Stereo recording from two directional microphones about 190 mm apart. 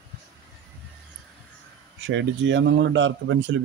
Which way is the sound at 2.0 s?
80° right.